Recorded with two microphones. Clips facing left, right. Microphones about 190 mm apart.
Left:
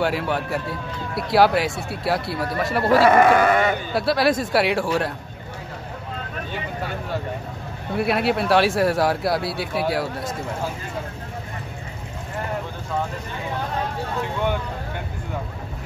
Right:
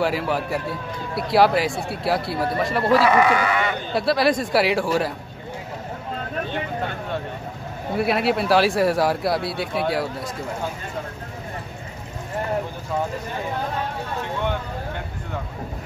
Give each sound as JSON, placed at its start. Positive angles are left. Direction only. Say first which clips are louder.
{"t": 0.0, "sound": "speech", "louder": "even", "side_deg": 0}
{"t": 3.0, "sound": "speech", "louder": "left 3 dB", "side_deg": 50}
{"t": 3.9, "sound": "speech", "louder": "right 3 dB", "side_deg": 0}
{"t": 7.9, "sound": "speech", "louder": "even", "side_deg": 0}